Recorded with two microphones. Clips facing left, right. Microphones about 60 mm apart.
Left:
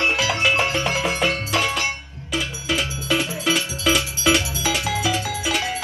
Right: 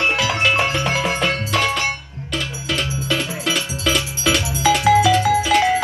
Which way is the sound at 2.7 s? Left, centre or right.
Centre.